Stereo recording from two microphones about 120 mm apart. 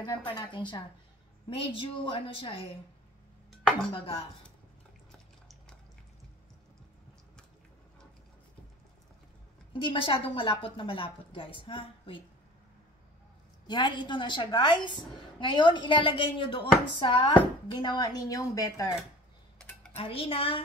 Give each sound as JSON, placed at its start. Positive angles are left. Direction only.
{"t": 0.0, "sound": "a woman's voice", "side_deg": 35}
{"t": 3.9, "sound": "speech", "side_deg": 50}
{"t": 9.7, "sound": "speech", "side_deg": 45}
{"t": 13.7, "sound": "a woman's voice", "side_deg": 40}
{"t": 20.0, "sound": "speech", "side_deg": 50}